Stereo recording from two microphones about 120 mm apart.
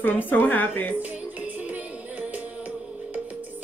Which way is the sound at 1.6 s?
10° right (ahead or behind).